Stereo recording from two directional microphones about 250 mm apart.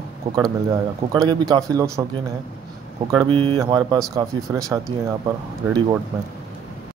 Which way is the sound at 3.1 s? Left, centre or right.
Centre.